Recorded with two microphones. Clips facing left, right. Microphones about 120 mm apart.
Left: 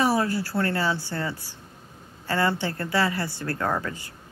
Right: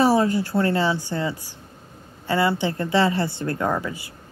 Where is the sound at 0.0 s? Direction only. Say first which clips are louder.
Right 5 dB; 25° right (ahead or behind).